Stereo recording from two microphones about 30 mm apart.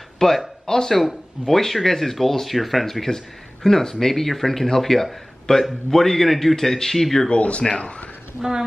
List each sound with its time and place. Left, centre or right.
0.2 s speech: left
1.5 s speech: centre
7.2 s speech: left